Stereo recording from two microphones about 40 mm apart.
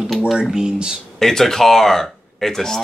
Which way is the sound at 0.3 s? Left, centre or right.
Centre.